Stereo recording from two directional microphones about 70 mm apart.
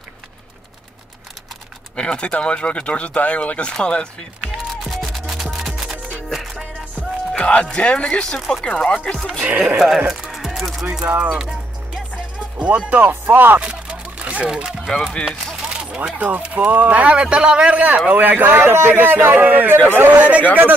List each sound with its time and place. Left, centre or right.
2.0 s speech: centre
4.8 s music: centre
7.3 s speech: centre
8.4 s speech: centre
8.6 s speech: centre
9.5 s speech: right
9.8 s music: centre
11.1 s music: centre
13.6 s a sound: centre
14.5 s speech: centre